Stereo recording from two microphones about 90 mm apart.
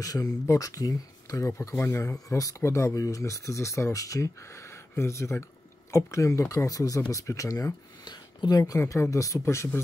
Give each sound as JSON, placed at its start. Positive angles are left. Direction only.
{"t": 0.0, "sound": "speech", "side_deg": 40}